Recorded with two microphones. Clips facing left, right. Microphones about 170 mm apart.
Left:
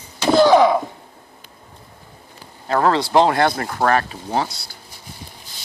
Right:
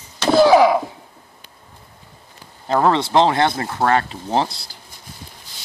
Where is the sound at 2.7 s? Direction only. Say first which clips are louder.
Right 1 dB; 20° right (ahead or behind).